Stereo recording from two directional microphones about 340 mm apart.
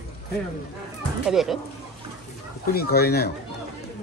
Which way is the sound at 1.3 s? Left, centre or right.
Centre.